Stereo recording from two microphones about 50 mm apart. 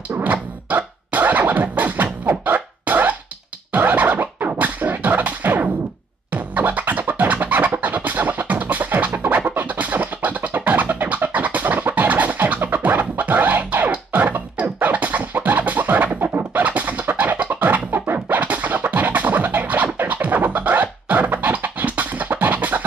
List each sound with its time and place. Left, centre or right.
0.2 s scratching: right
2.2 s music: right
3.7 s scratching: right
12.6 s music: right